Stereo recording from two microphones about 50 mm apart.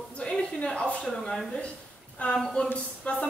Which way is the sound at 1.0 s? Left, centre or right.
Centre.